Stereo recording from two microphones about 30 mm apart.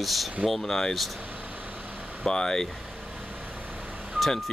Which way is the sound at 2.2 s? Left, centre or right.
Left.